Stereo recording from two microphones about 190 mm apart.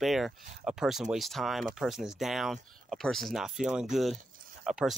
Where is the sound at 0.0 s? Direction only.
Centre (ahead or behind).